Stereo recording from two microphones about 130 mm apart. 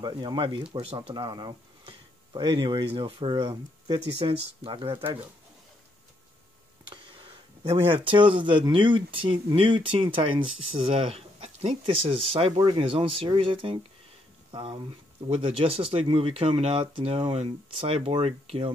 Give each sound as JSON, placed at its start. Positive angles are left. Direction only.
{"t": 0.0, "sound": "speech", "side_deg": -35}
{"t": 6.9, "sound": "a sound", "side_deg": -40}
{"t": 7.7, "sound": "speech", "side_deg": -40}